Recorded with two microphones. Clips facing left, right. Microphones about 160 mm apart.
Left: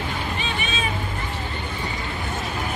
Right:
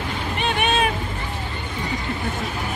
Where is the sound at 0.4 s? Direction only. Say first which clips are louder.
Right 7 dB; 65° right (ahead or behind).